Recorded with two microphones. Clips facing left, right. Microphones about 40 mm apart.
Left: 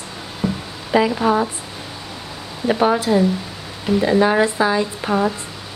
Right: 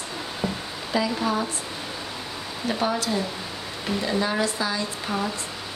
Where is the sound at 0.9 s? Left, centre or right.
Left.